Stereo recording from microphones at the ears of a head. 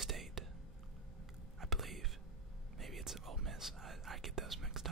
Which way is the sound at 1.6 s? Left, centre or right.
Right.